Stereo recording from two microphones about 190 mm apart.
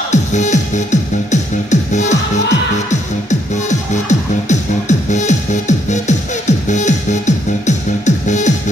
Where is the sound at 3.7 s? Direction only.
40° left (ahead or behind).